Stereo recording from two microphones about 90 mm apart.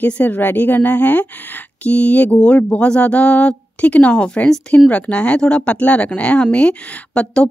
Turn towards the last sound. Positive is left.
turn(degrees=15)  # may be behind; listen again after turning